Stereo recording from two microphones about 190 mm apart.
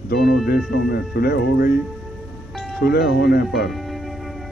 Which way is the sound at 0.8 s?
55° left (ahead or behind).